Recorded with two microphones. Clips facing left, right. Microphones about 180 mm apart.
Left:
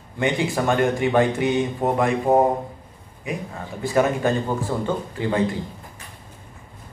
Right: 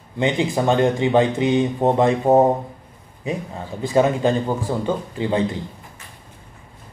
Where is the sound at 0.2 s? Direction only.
25° right (ahead or behind).